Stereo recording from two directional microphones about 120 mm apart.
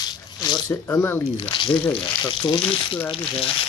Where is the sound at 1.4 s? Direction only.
45° left (ahead or behind).